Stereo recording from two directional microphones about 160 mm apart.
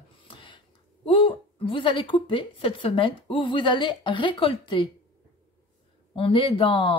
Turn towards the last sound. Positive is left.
turn(degrees=30)  # may be behind; listen again after turning